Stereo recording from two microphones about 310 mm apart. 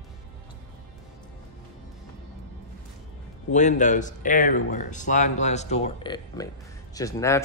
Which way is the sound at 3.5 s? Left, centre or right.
Left.